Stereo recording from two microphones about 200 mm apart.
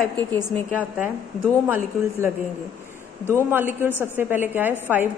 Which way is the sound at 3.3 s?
10° right (ahead or behind).